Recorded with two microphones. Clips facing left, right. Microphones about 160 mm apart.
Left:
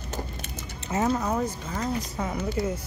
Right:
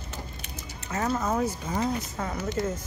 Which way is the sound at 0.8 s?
20° left (ahead or behind).